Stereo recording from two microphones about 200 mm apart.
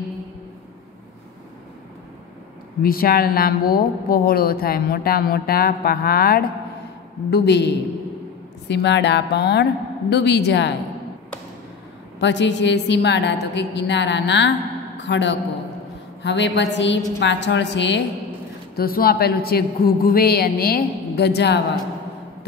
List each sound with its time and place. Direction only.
2.8 s a woman's voice: 50° left (ahead or behind)
12.2 s a woman's voice: 60° left (ahead or behind)
18.8 s speech: 50° left (ahead or behind)